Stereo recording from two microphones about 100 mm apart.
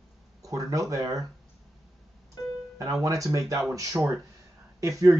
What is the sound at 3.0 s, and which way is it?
Speech, 35° right (ahead or behind).